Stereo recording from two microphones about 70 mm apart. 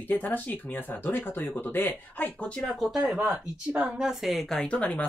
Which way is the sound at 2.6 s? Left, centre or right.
Centre.